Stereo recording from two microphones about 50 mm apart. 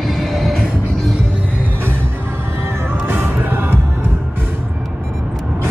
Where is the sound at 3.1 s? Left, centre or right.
Right.